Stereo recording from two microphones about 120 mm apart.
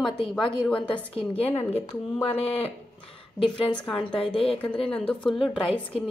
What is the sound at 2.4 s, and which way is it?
Speech, 55° left (ahead or behind).